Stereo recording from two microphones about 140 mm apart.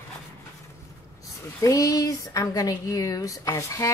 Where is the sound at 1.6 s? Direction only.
25° left (ahead or behind).